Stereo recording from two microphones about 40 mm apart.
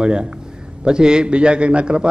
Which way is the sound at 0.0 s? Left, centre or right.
Right.